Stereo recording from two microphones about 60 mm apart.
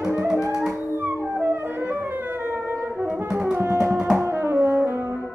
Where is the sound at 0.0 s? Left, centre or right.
Right.